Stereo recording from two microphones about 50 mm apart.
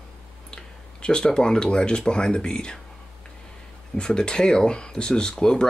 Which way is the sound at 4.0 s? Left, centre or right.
Centre.